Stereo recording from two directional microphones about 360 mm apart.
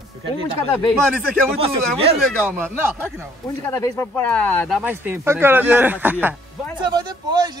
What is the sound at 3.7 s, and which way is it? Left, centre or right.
Speech, centre.